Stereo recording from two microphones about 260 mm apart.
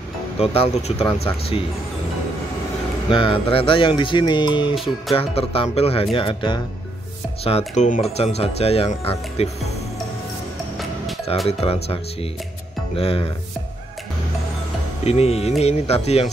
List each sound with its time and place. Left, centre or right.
0.4 s speech: left
3.1 s speech: centre
4.7 s speech: centre
5.1 s speech: left
11.4 s speech: left
15.0 s speech: left